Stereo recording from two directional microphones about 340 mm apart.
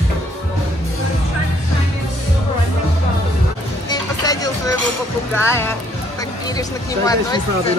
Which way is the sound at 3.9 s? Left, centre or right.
Centre.